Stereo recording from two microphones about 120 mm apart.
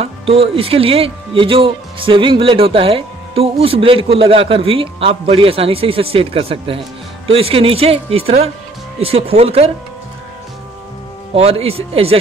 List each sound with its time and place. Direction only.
0.0 s speech: 55° right (ahead or behind)
11.3 s speech: 55° right (ahead or behind)